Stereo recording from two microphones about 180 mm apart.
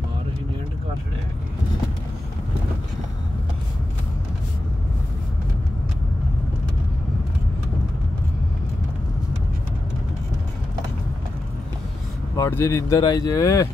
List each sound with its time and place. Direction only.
12.4 s speech: 15° left (ahead or behind)